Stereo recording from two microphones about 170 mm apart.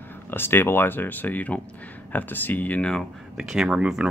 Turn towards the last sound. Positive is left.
turn(degrees=-5)  # may be behind; listen again after turning